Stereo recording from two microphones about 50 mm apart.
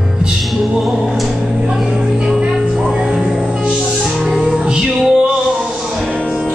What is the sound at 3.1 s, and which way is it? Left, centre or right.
Music, centre.